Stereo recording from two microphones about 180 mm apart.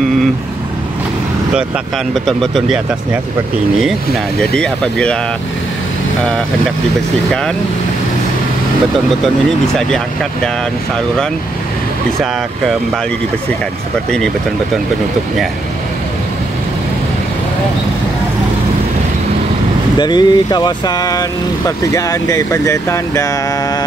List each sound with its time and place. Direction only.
2.2 s speech: centre (ahead or behind)
4.4 s speech: 5° left (ahead or behind)
9.8 s speech: 5° left (ahead or behind)
20.0 s speech: 25° left (ahead or behind)